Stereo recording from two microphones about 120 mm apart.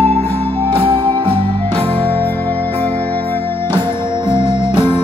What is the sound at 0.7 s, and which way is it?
Music, 45° right (ahead or behind).